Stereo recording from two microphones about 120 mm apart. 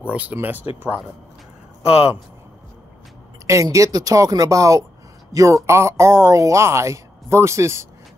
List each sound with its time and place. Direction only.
0.0 s speech: 10° right (ahead or behind)
1.9 s speech: 55° left (ahead or behind)
3.4 s speech: 25° right (ahead or behind)